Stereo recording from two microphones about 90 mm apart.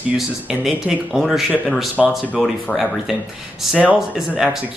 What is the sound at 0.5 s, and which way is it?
Speech, 10° right (ahead or behind).